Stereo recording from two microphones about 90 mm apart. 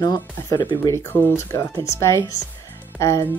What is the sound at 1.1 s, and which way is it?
Speech, 30° left (ahead or behind).